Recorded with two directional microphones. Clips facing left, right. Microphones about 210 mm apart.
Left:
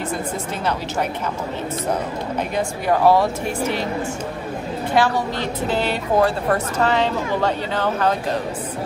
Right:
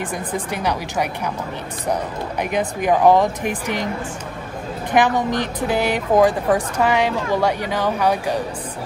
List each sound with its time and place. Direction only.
2.5 s speech: 15° right (ahead or behind)
4.9 s speech: 15° right (ahead or behind)